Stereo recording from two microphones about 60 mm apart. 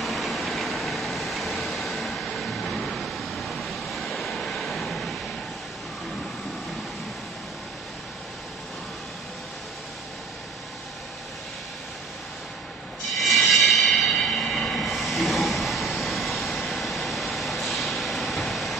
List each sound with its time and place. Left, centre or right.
0.0 s vehicle: centre
13.2 s train: centre